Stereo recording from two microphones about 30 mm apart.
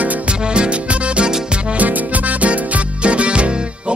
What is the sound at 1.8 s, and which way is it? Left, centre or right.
Music, right.